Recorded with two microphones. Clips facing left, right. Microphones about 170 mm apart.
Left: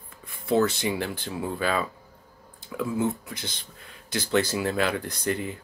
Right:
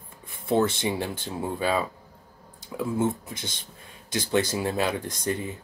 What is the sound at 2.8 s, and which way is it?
Speech, 25° right (ahead or behind).